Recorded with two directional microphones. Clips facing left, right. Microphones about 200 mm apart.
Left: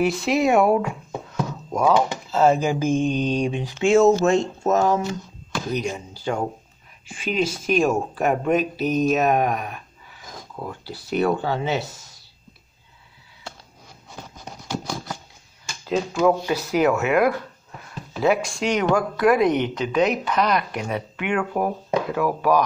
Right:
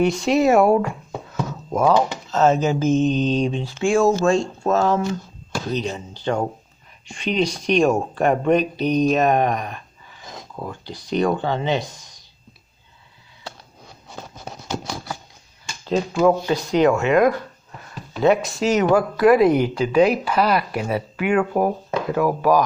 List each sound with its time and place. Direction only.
0.0 s speech: centre (ahead or behind)
2.3 s mantra: 10° left (ahead or behind)
7.1 s speech: 5° left (ahead or behind)
10.6 s mantra: 5° left (ahead or behind)
15.7 s speech: 5° left (ahead or behind)